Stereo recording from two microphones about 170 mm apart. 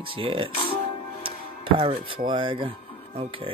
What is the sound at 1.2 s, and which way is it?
Music, 30° right (ahead or behind).